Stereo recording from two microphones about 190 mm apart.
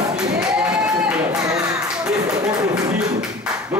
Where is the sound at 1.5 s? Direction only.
5° right (ahead or behind).